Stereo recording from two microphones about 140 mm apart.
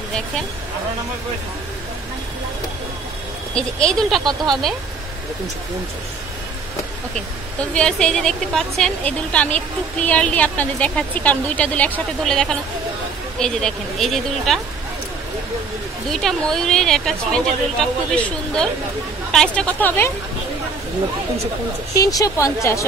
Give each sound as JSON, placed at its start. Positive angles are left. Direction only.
{"t": 3.5, "sound": "a woman's voice", "side_deg": 5}
{"t": 7.7, "sound": "a woman's voice", "side_deg": 5}
{"t": 16.1, "sound": "a woman's voice", "side_deg": 5}
{"t": 21.9, "sound": "speech", "side_deg": 25}